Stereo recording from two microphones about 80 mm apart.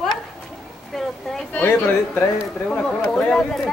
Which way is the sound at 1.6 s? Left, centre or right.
Left.